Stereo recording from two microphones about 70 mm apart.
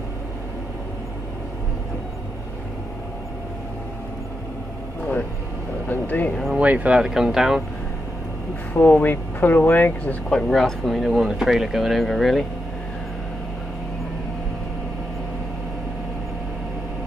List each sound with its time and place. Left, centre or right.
5.9 s a sound: left
6.5 s speech: right
7.0 s speech: centre
8.8 s speech: left
10.3 s speech: centre